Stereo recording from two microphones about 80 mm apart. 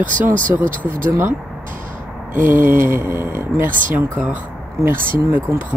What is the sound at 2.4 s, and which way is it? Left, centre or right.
Speech, right.